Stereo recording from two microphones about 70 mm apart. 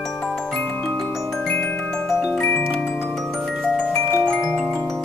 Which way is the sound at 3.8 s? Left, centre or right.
Centre.